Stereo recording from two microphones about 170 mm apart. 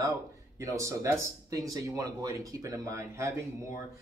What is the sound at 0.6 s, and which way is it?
Speech, 15° right (ahead or behind).